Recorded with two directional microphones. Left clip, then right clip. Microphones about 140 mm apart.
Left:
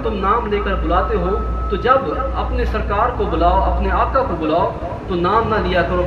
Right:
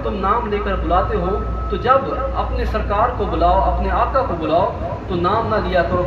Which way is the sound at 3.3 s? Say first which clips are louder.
Even; 40° left (ahead or behind).